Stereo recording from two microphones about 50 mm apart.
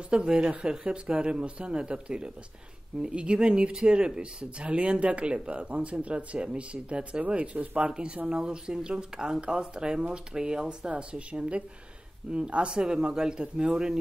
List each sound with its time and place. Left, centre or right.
0.1 s speech: centre